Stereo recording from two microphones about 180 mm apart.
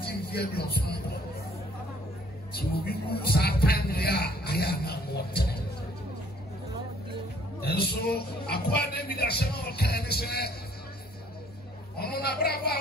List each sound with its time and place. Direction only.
0.0 s speech: 60° left (ahead or behind)
2.5 s music: 60° left (ahead or behind)
7.6 s speech: 60° left (ahead or behind)
12.0 s a sound: 60° left (ahead or behind)